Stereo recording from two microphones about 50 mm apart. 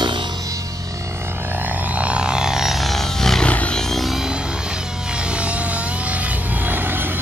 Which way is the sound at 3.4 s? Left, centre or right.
Left.